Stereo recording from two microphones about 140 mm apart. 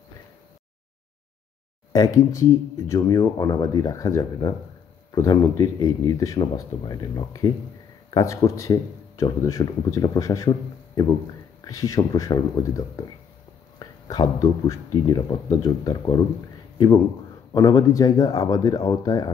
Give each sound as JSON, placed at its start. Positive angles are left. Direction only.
{"t": 1.9, "sound": "speech", "side_deg": 25}
{"t": 11.6, "sound": "speech", "side_deg": 25}